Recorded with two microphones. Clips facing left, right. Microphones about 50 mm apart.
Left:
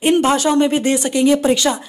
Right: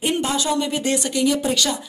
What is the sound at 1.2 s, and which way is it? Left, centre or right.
Speech, left.